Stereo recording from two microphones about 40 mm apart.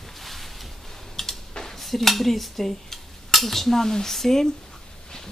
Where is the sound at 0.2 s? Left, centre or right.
Centre.